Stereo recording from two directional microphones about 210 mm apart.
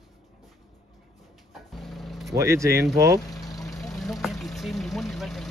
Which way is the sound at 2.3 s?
15° right (ahead or behind).